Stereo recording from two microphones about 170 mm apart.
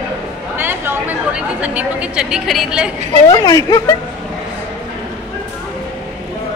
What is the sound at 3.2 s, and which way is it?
Speech, 20° left (ahead or behind).